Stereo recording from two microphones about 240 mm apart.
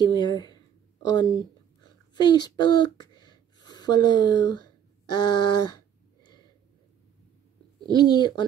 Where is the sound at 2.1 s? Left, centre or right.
Centre.